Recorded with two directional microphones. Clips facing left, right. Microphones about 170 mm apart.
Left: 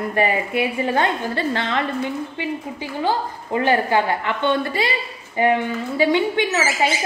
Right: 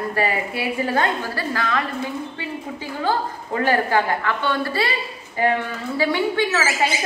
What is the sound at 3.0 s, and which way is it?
A woman's voice, 20° left (ahead or behind).